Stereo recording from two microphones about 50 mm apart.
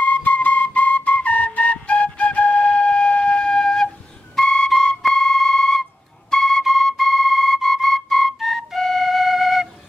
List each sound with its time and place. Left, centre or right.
0.0 s flute: left; by 9.7 s centre